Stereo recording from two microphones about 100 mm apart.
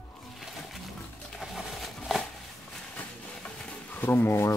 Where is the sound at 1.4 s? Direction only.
Centre (ahead or behind).